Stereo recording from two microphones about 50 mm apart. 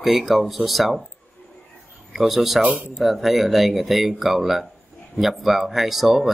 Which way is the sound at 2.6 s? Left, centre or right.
Right.